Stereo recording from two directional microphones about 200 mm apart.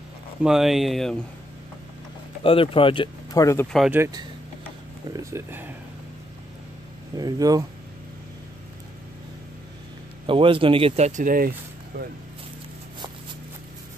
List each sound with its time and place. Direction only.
0.4 s speech: centre (ahead or behind)
2.4 s speech: 25° left (ahead or behind)
3.7 s speech: centre (ahead or behind)
4.0 s speech: 20° right (ahead or behind)
7.2 s speech: 20° right (ahead or behind)
10.2 s speech: 25° right (ahead or behind); by 11.5 s 45° right (ahead or behind)
11.9 s speech: 60° right (ahead or behind)